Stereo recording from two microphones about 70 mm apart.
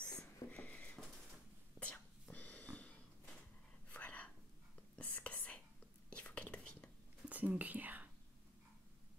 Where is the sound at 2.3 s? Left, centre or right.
Left.